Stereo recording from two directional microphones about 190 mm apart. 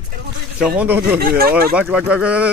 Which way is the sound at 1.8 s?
5° right (ahead or behind).